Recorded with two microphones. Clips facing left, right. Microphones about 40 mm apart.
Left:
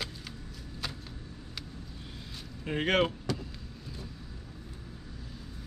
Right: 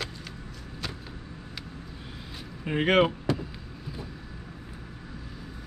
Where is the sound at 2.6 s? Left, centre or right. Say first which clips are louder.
Right 5 dB; centre.